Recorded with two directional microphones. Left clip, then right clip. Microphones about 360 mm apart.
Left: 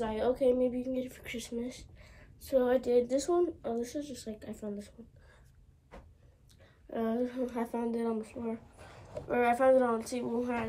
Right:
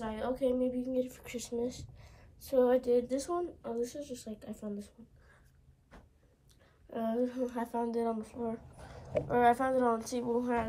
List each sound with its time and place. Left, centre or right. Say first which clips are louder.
0.0 s speech: left 5 dB; centre
6.9 s speech: even; centre